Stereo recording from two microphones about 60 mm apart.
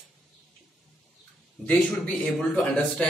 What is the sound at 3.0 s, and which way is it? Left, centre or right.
Speech, centre.